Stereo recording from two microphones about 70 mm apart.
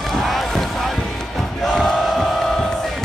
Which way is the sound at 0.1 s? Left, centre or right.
Centre.